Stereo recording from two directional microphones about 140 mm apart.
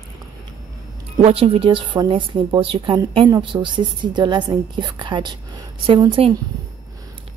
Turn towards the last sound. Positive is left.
turn(degrees=-40)  # may be behind; listen again after turning